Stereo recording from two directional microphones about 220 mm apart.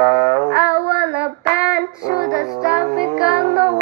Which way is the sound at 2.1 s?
45° right (ahead or behind).